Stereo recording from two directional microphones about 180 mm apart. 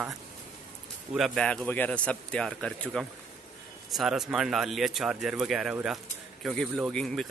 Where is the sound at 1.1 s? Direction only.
Centre (ahead or behind).